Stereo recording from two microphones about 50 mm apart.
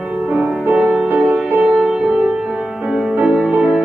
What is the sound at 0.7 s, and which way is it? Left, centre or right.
Music, centre.